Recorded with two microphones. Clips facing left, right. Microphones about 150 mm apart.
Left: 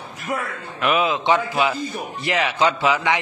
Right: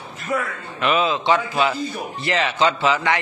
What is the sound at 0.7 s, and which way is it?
A man's voice, 5° left (ahead or behind).